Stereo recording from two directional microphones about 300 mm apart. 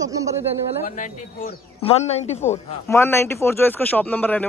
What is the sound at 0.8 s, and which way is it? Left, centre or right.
Speech, left.